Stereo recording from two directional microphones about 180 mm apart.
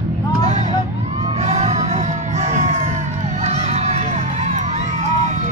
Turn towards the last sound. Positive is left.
turn(degrees=-40)  # may be behind; listen again after turning